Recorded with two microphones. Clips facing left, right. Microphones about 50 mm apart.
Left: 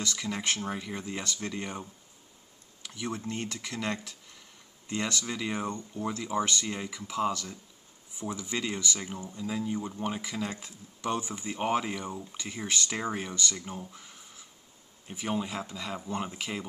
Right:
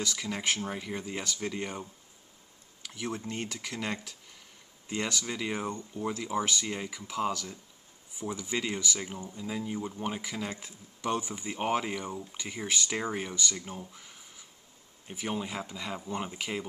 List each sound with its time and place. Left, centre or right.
0.0 s speech: centre
2.8 s speech: centre
12.1 s speech: centre
12.4 s speech: centre